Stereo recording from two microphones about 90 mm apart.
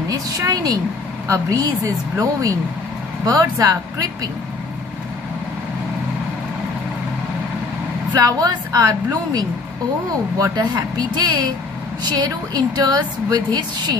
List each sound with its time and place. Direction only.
0.1 s a woman's voice: 40° right (ahead or behind)
8.1 s a woman's voice: 45° right (ahead or behind)